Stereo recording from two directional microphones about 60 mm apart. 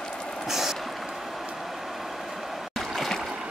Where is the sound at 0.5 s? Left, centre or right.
Centre.